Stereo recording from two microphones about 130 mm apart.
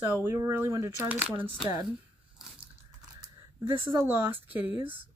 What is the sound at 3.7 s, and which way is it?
Speech, 40° right (ahead or behind).